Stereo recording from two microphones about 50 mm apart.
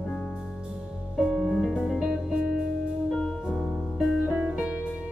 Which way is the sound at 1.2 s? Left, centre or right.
Centre.